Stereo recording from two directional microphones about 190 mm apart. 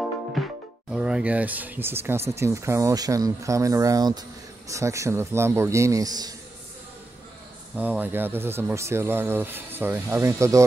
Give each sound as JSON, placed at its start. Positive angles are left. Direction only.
{"t": 0.4, "sound": "music", "side_deg": 0}
{"t": 0.9, "sound": "speech", "side_deg": -5}
{"t": 7.7, "sound": "speech", "side_deg": -5}